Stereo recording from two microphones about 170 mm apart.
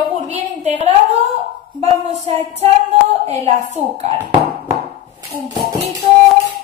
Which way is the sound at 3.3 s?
40° right (ahead or behind).